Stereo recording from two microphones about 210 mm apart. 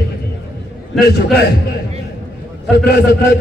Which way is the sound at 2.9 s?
50° left (ahead or behind).